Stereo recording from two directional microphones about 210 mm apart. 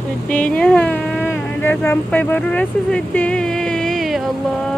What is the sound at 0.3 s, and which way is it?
Speech, 5° left (ahead or behind).